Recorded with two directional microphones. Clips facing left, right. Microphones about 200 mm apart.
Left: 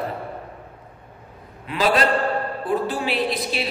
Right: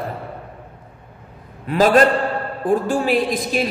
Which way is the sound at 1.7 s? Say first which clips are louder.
Right 6 dB; 45° right (ahead or behind).